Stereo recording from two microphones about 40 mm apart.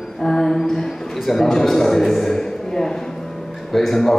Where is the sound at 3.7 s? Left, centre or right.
Centre.